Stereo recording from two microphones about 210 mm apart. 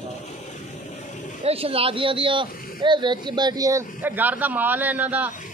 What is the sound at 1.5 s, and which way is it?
Speech, 25° right (ahead or behind).